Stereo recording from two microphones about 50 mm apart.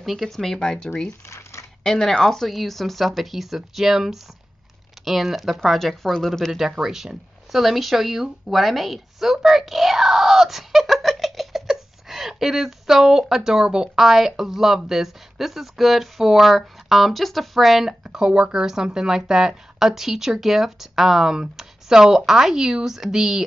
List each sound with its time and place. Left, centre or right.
0.0 s speech: centre
1.2 s coin: left
1.8 s speech: centre
6.5 s speech: centre
18.1 s a woman's voice: centre